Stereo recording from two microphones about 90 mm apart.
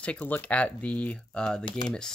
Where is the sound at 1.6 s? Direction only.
65° left (ahead or behind).